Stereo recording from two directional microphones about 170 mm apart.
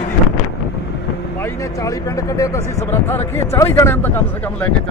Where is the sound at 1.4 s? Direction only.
20° left (ahead or behind).